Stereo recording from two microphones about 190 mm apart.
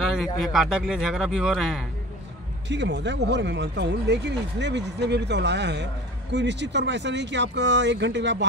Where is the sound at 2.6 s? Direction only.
65° right (ahead or behind).